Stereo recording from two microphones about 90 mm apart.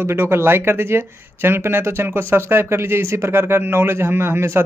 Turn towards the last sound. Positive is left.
turn(degrees=-30)  # may be behind; listen again after turning